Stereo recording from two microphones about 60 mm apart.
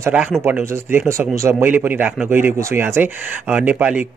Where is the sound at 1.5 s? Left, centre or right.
Right.